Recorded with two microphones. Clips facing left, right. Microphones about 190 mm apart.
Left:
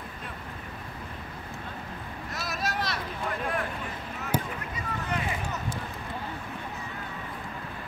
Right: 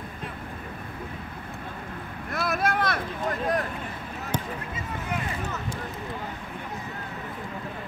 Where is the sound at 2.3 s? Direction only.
55° right (ahead or behind).